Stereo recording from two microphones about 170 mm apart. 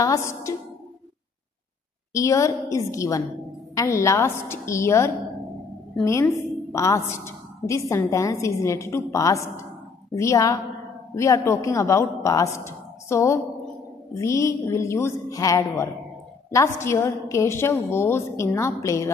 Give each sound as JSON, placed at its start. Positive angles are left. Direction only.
{"t": 0.0, "sound": "a woman's voice", "side_deg": 20}
{"t": 2.1, "sound": "a woman's voice", "side_deg": 20}